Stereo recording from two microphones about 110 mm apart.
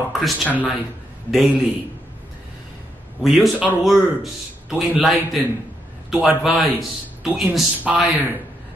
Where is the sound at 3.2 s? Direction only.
Centre (ahead or behind).